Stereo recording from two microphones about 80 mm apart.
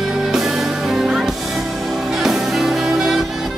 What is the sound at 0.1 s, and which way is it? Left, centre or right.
Music, centre.